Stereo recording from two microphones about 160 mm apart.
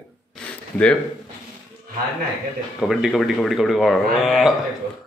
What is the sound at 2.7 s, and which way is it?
Speech, centre (ahead or behind).